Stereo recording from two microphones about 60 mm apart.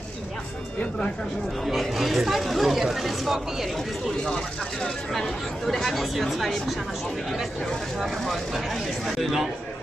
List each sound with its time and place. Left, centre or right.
1.7 s speech: centre
4.8 s speech: centre
8.0 s speech: centre